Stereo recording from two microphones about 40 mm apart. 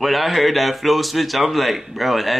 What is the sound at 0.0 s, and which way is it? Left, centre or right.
A man's voice, centre.